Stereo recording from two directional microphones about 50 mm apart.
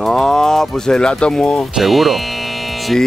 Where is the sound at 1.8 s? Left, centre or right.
Centre.